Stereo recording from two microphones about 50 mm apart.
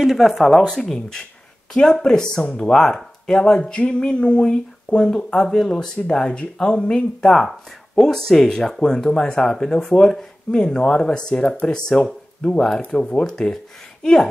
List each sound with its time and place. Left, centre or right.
0.0 s speech: centre